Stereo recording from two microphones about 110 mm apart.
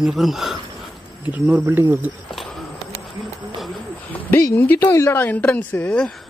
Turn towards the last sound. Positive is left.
turn(degrees=10)  # may be behind; listen again after turning